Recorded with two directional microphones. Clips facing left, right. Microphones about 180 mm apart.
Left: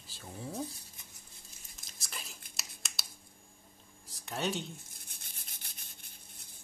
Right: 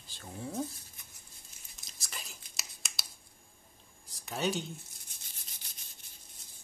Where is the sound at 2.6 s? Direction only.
Centre (ahead or behind).